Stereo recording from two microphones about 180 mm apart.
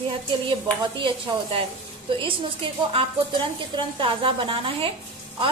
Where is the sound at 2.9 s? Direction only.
25° right (ahead or behind).